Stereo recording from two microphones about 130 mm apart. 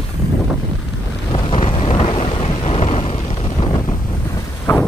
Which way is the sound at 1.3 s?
45° left (ahead or behind).